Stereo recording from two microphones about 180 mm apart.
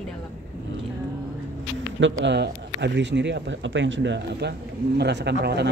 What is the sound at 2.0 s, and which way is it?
Speech, 75° right (ahead or behind).